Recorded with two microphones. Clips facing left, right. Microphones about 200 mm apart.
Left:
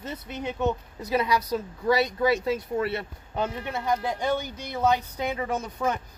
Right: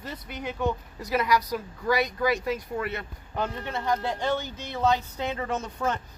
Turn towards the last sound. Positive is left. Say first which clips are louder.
# left 1 dB
turn(degrees=10)  # may be behind; listen again after turning